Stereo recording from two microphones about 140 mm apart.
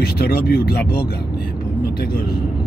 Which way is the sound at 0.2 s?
90° left.